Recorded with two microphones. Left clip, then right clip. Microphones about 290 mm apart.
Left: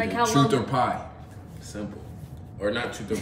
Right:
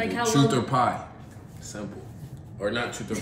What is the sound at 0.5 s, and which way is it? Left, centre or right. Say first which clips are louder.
Speech: even; centre.